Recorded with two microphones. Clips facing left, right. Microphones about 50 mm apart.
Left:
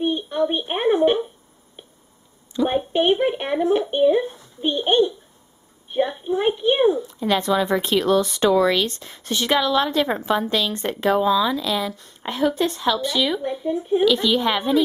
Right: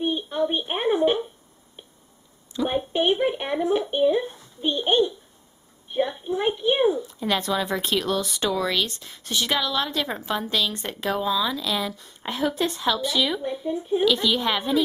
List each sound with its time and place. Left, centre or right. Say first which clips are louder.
0.0 s a woman's voice: left 3 dB; centre
2.5 s a woman's voice: left 4 dB; centre